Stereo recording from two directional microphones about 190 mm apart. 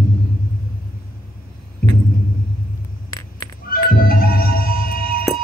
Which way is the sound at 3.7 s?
50° left (ahead or behind).